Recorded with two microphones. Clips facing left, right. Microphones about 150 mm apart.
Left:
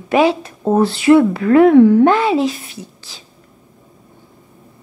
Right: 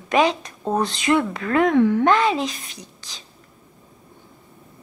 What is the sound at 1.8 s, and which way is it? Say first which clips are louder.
Speech: left 9 dB; 45° left (ahead or behind).